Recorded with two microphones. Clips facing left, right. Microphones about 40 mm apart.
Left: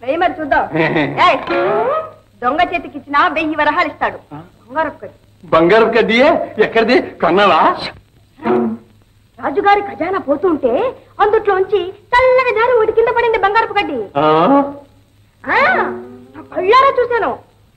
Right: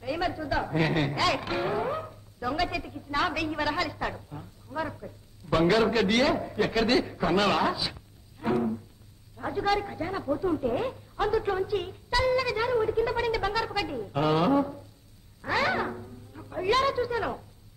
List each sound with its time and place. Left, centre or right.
0.0 s speech: left